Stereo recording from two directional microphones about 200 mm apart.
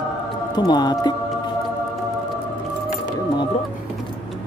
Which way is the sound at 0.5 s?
20° left (ahead or behind).